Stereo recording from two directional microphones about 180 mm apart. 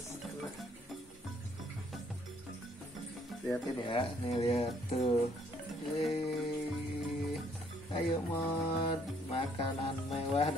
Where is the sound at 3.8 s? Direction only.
30° left (ahead or behind).